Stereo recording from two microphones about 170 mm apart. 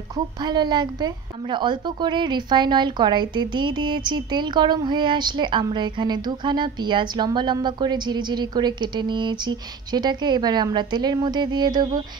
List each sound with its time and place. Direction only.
0.1 s a woman's voice: 25° right (ahead or behind)